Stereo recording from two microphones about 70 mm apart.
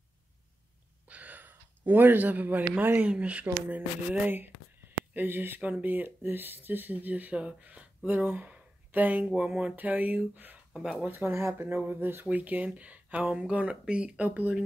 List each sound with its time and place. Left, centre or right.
1.0 s a sound: right
3.1 s speech: centre
11.1 s speech: right